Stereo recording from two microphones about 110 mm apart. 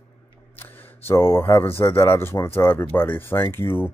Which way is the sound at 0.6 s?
20° left (ahead or behind).